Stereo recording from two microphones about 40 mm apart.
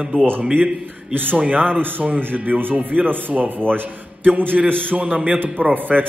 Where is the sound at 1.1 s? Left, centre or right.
Right.